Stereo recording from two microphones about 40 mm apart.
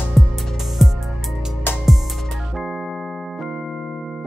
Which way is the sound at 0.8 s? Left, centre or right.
Centre.